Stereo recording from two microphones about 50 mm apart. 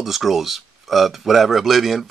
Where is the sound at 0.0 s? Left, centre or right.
Centre.